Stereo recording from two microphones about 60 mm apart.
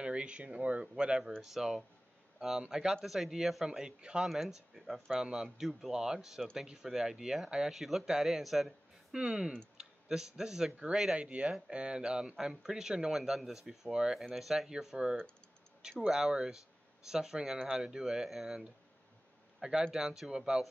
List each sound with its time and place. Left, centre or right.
0.0 s speech: centre
1.4 s speech: centre
19.9 s speech: centre